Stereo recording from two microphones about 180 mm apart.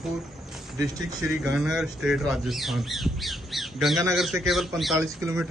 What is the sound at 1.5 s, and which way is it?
A man's voice, centre (ahead or behind).